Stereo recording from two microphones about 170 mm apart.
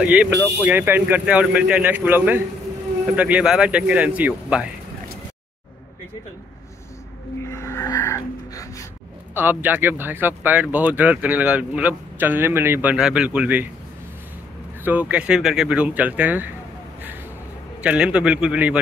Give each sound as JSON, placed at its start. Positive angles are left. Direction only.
{"t": 0.0, "sound": "speech", "side_deg": -10}
{"t": 7.4, "sound": "music", "side_deg": 15}
{"t": 9.3, "sound": "speech", "side_deg": -10}
{"t": 14.9, "sound": "speech", "side_deg": -10}
{"t": 17.8, "sound": "speech", "side_deg": -5}